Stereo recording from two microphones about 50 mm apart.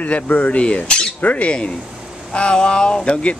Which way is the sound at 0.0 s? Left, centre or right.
Left.